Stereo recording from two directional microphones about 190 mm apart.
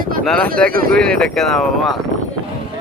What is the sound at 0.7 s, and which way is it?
Speech, 50° right (ahead or behind).